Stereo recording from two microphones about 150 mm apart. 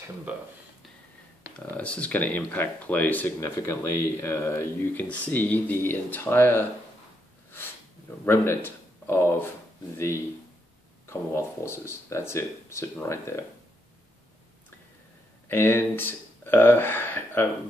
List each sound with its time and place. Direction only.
1.8 s speech: 10° left (ahead or behind)
8.3 s speech: 15° left (ahead or behind)
15.4 s speech: 15° left (ahead or behind)